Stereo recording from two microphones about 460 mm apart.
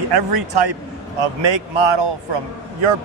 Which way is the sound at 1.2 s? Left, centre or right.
Right.